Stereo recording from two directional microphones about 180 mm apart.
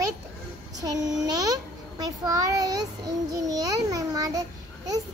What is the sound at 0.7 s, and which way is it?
A child's voice, 20° right (ahead or behind).